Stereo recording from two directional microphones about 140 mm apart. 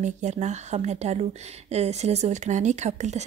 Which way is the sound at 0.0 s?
55° right (ahead or behind).